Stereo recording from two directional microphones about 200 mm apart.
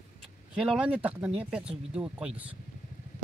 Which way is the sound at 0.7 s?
5° right (ahead or behind).